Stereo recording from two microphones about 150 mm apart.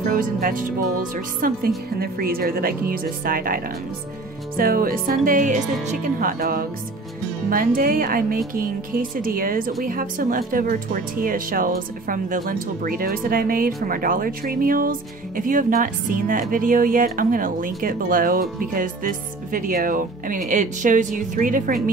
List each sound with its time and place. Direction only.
0.1 s speech: 65° right (ahead or behind)
2.0 s speech: 90° right; by 21.7 s 65° right (ahead or behind)